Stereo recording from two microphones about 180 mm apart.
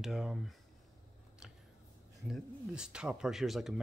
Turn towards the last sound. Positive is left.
turn(degrees=0)  # may be behind; listen again after turning